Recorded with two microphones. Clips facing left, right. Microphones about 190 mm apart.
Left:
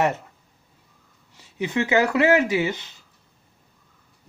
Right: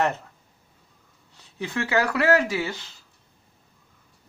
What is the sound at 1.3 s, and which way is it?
Speech, 15° left (ahead or behind).